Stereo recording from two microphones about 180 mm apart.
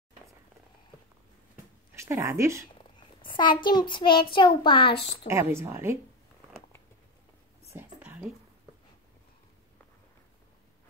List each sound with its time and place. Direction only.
2.0 s a woman's voice: 15° right (ahead or behind)
3.2 s child singing: 25° left (ahead or behind)
4.3 s a child's voice: 25° left (ahead or behind)
5.3 s a woman's voice: 15° right (ahead or behind)
7.7 s a sound: 10° right (ahead or behind)